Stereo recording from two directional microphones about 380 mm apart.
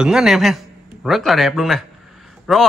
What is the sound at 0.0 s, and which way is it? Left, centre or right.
A man's voice, centre.